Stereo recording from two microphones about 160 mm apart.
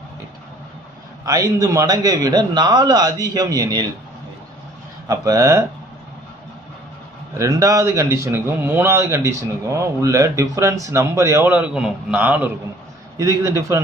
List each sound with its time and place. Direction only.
1.2 s a man's voice: 20° right (ahead or behind)
5.0 s a man's voice: 20° right (ahead or behind)
7.3 s a man's voice: 20° right (ahead or behind)